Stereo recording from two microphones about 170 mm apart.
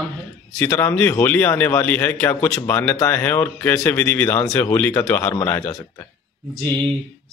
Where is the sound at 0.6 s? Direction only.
10° left (ahead or behind).